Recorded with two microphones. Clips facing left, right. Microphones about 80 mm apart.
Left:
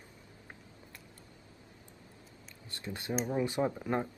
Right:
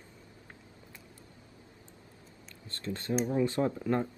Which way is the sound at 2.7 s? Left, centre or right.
Centre.